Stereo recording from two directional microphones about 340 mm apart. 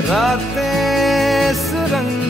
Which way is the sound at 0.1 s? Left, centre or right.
Centre.